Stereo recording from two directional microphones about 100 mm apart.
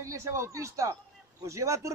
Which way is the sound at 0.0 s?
30° right (ahead or behind).